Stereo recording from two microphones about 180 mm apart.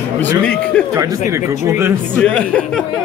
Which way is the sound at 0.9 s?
15° right (ahead or behind).